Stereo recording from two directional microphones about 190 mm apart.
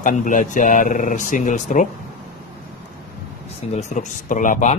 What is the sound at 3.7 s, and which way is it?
Speech, 40° left (ahead or behind).